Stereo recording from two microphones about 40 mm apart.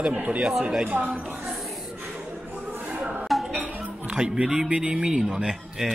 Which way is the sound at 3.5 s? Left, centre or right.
Right.